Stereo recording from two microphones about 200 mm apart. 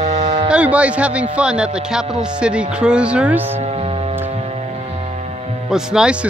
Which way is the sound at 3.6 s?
30° right (ahead or behind).